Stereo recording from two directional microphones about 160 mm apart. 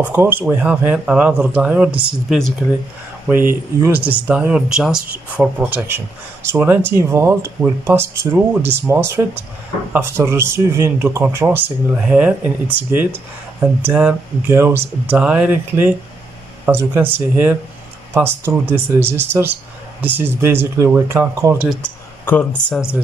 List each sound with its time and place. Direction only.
0.0 s speech: 10° right (ahead or behind)
3.3 s speech: 15° right (ahead or behind)
22.2 s speech: 10° left (ahead or behind)